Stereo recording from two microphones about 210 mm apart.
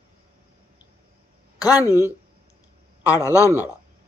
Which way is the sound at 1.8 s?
15° left (ahead or behind).